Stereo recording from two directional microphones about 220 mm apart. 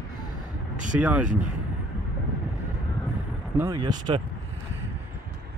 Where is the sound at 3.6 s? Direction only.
20° right (ahead or behind).